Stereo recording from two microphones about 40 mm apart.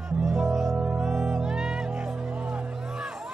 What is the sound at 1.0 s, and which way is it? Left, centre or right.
Music, centre.